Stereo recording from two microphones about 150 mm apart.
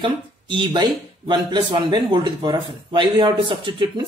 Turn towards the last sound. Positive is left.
turn(degrees=-30)  # may be behind; listen again after turning